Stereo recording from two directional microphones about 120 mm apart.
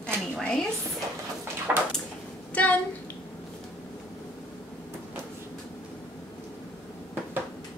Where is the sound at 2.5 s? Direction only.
15° left (ahead or behind).